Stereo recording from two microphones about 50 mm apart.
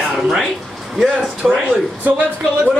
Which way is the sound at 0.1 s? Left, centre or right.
Centre.